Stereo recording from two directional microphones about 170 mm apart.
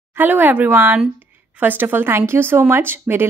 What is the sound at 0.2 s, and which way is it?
A woman's voice, 10° right (ahead or behind).